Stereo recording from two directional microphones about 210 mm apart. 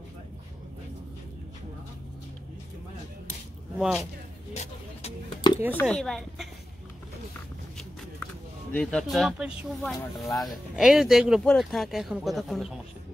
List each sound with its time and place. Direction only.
3.7 s speech: 5° right (ahead or behind)
4.6 s a sound: 25° left (ahead or behind)
5.8 s speech: 5° left (ahead or behind)
8.7 s speech: centre (ahead or behind)